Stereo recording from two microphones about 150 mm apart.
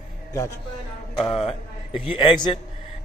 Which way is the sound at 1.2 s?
35° left (ahead or behind).